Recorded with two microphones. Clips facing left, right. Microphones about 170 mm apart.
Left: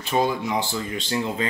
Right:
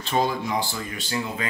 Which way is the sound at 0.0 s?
15° left (ahead or behind).